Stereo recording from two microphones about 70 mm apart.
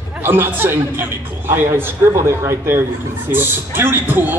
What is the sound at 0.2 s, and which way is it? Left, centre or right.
Speech, right.